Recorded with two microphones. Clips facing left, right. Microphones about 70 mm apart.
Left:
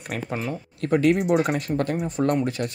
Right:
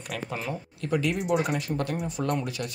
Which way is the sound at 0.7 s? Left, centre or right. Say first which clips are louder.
Left 8 dB; left.